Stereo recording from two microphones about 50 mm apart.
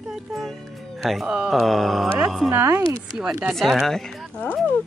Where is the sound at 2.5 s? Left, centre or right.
Right.